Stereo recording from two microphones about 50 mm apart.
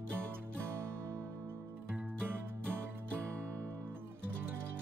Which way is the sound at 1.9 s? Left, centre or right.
Right.